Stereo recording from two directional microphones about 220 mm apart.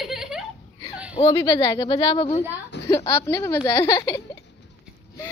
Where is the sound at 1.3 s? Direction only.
15° left (ahead or behind).